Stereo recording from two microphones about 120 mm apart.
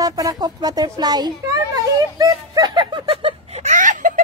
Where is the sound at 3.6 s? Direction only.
90° right.